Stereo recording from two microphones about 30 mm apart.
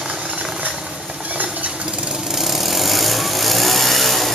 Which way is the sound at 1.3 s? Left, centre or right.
Right.